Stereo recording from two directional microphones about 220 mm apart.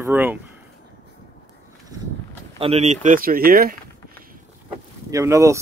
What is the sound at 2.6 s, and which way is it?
Speech, 30° right (ahead or behind).